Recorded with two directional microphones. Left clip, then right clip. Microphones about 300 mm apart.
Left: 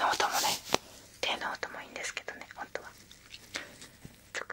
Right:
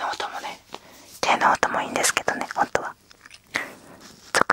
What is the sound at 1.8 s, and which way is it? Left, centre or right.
Whispering, right.